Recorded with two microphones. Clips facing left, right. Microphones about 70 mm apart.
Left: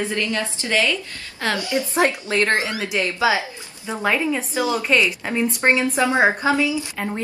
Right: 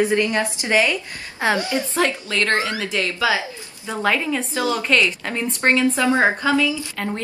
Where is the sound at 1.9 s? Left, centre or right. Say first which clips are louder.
Left 3 dB; left.